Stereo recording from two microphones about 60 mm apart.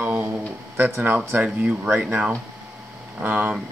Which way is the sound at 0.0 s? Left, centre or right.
Right.